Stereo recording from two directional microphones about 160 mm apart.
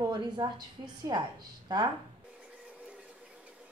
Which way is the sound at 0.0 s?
25° right (ahead or behind).